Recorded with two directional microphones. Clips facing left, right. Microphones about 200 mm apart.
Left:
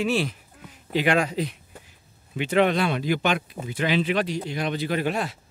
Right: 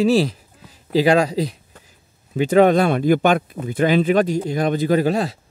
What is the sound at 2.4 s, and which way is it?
Speech, 40° right (ahead or behind).